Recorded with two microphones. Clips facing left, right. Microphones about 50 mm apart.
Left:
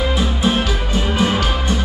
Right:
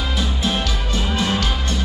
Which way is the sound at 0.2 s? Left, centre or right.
Centre.